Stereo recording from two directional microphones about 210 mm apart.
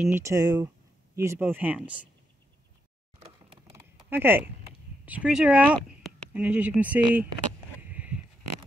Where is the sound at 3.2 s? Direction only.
30° right (ahead or behind).